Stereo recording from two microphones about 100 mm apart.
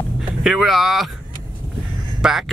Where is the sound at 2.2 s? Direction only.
5° right (ahead or behind).